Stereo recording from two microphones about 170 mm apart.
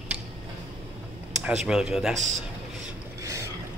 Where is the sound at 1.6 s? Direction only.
5° right (ahead or behind).